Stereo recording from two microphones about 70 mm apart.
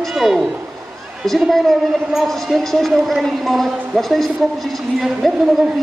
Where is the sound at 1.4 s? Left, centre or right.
Centre.